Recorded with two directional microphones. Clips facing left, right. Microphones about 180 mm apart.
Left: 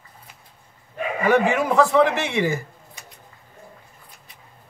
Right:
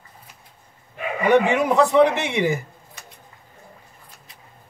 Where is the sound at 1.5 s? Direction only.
20° right (ahead or behind).